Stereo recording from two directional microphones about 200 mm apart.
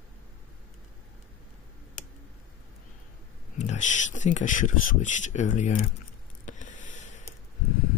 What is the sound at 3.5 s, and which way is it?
Speech, 35° left (ahead or behind).